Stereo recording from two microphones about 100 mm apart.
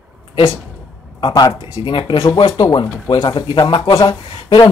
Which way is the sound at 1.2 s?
50° left (ahead or behind).